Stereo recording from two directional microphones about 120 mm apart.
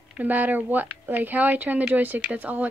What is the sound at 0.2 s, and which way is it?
A woman's voice, 15° right (ahead or behind).